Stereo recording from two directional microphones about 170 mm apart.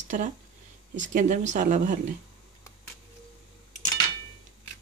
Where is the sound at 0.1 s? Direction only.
50° right (ahead or behind).